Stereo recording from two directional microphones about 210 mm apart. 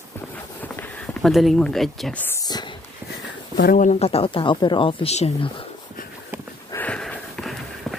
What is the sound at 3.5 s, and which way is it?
Speech, 40° left (ahead or behind).